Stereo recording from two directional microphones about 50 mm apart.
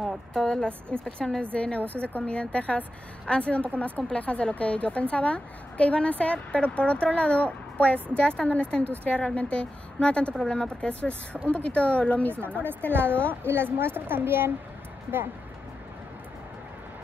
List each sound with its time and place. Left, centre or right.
0.3 s a woman's voice: centre
12.9 s a child's voice: right